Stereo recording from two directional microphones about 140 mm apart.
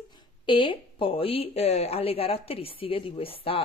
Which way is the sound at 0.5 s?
35° left (ahead or behind).